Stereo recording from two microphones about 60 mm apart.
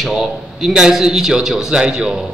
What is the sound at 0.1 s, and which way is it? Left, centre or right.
A man's voice, centre.